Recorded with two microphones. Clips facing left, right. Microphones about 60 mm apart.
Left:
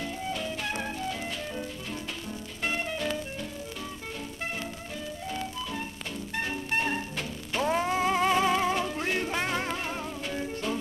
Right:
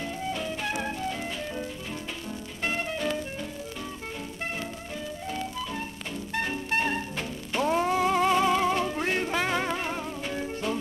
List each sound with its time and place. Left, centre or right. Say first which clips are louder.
0.0 s music: right 1 dB; centre
5.3 s music: right 2 dB; centre
7.9 s music: right 1 dB; centre
8.8 s music: right 2 dB; centre